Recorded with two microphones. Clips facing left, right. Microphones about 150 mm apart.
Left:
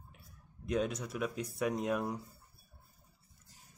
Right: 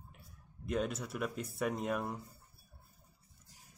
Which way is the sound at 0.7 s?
5° right (ahead or behind).